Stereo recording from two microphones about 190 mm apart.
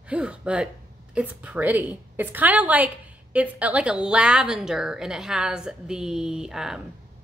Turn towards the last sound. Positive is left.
turn(degrees=-5)  # may be behind; listen again after turning